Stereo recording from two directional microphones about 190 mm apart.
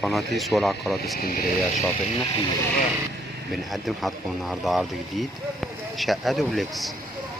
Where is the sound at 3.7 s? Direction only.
Centre (ahead or behind).